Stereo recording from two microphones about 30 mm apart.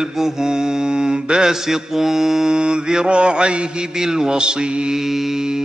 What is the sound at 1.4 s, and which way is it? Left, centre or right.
A man's voice, centre.